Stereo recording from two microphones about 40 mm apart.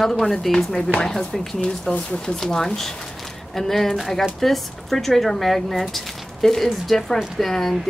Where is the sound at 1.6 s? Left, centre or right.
Left.